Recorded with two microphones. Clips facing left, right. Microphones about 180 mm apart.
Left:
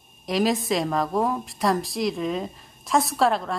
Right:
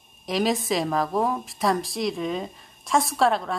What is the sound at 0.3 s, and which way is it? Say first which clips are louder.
A woman's voice: left 1 dB; centre (ahead or behind).